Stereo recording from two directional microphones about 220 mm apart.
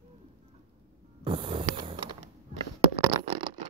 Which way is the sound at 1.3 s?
20° right (ahead or behind).